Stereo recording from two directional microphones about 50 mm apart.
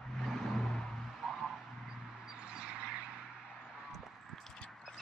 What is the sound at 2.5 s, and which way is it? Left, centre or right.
Vehicle, right.